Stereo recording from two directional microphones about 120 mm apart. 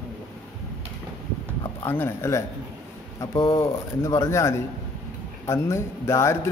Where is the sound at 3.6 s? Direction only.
25° left (ahead or behind).